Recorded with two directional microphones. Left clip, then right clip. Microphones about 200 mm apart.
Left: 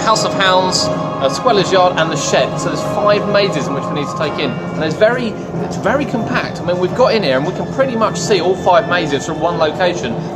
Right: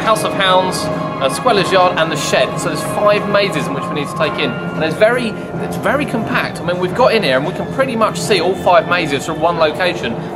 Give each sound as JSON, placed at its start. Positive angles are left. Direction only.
{"t": 0.0, "sound": "speech", "side_deg": -5}